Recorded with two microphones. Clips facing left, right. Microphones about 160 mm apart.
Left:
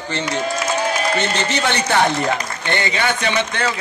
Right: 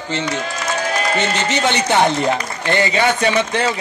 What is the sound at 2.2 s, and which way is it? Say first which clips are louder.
Speech: right 2 dB; 35° right (ahead or behind).